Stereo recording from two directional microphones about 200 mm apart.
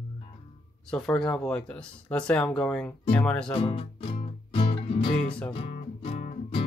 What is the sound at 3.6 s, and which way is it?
Music, 25° left (ahead or behind).